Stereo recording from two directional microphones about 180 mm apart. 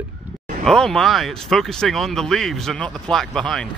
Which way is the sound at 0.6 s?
Centre (ahead or behind).